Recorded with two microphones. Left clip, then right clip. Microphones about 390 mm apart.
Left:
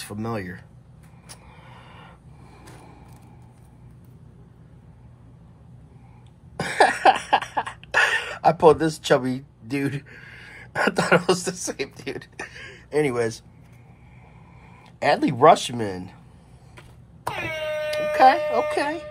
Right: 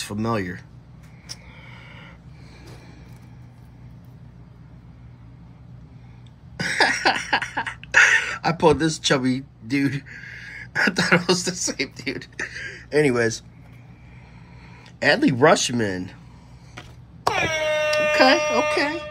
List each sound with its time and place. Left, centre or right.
0.0 s speech: centre
1.2 s a sound: centre
6.5 s a sound: centre
15.0 s speech: centre
17.2 s air horn: centre
18.1 s speech: centre